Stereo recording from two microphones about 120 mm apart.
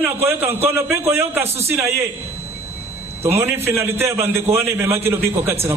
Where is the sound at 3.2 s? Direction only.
20° right (ahead or behind).